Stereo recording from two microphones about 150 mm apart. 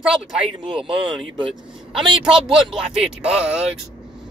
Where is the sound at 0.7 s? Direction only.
35° right (ahead or behind).